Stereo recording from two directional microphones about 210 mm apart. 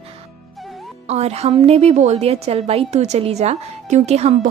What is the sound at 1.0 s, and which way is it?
A woman's voice, 30° right (ahead or behind).